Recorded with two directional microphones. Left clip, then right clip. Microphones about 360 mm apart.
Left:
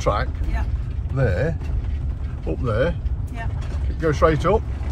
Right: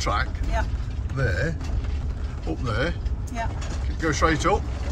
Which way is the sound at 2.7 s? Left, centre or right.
Centre.